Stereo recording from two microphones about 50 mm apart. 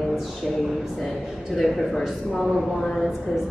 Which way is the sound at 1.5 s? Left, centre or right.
Centre.